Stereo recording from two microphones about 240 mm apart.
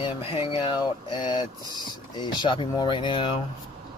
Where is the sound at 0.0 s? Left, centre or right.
Left.